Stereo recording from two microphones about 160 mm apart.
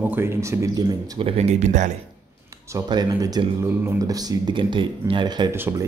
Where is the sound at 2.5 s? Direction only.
25° right (ahead or behind).